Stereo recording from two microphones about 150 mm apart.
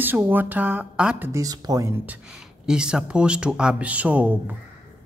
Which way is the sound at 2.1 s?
5° right (ahead or behind).